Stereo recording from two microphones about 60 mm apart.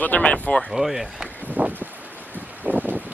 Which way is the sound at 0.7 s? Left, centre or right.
Centre.